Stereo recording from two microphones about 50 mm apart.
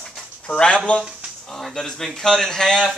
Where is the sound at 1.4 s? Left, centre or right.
Centre.